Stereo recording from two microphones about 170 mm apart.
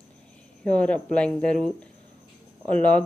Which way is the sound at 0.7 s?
5° left (ahead or behind).